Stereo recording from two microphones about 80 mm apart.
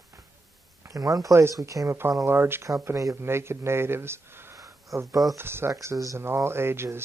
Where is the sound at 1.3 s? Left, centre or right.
Right.